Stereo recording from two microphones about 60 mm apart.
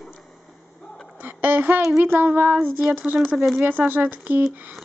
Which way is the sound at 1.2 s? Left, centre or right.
Right.